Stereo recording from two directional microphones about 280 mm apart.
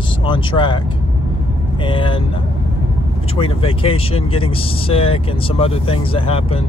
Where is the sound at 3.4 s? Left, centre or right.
Centre.